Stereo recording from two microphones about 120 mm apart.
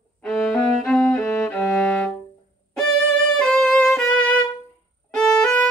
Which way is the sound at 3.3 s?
5° left (ahead or behind).